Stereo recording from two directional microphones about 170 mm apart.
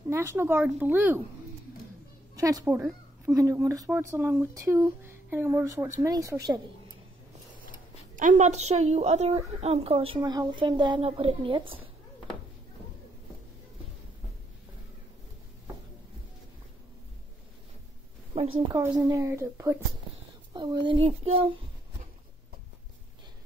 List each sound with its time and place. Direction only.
0.1 s a woman's voice: 15° right (ahead or behind)
2.3 s a woman's voice: 20° right (ahead or behind)
8.2 s a woman's voice: 45° right (ahead or behind)
18.3 s a sound: 35° right (ahead or behind)
18.7 s a woman's voice: 20° right (ahead or behind)